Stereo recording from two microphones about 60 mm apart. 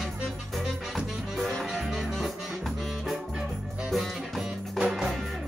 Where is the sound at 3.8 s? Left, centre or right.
Centre.